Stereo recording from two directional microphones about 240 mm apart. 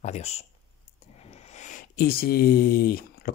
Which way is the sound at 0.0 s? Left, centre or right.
Left.